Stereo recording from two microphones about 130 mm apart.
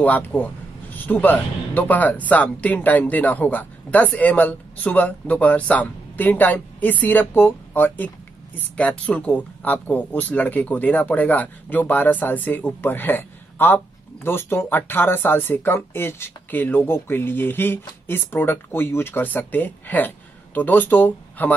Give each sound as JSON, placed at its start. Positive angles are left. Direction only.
{"t": 0.0, "sound": "speech", "side_deg": 10}